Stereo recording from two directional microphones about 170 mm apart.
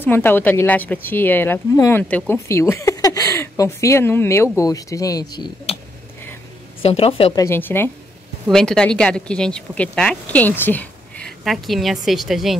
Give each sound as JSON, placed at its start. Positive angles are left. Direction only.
{"t": 0.0, "sound": "speech", "side_deg": 10}
{"t": 6.8, "sound": "speech", "side_deg": 35}
{"t": 7.3, "sound": "speech", "side_deg": 15}